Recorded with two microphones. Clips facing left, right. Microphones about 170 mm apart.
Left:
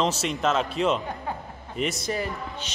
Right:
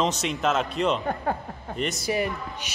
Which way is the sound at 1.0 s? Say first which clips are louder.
Right 5 dB; 55° right (ahead or behind).